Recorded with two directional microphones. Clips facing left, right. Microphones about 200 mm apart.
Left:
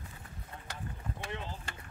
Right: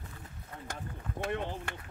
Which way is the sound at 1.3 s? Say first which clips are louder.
Right 6 dB; 60° right (ahead or behind).